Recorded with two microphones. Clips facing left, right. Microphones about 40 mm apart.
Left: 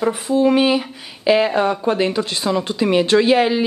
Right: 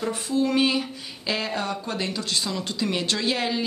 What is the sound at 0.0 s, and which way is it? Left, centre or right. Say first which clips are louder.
Speech: left 8 dB; left.